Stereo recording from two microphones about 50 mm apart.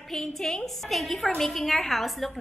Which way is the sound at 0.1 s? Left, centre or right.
Centre.